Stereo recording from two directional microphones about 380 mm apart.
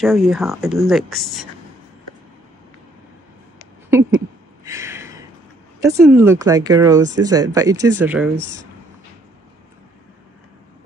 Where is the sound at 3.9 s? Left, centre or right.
Centre.